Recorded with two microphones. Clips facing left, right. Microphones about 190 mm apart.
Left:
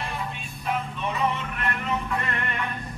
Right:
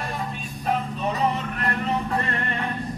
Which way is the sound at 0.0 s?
40° right (ahead or behind).